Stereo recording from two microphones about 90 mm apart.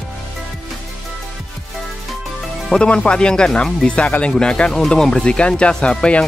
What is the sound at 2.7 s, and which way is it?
Speech, 10° left (ahead or behind).